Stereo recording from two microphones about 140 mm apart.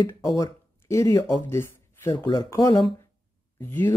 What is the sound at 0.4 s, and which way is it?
Speech, 20° left (ahead or behind).